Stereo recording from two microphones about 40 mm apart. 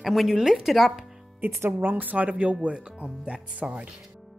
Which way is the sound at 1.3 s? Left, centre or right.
Right.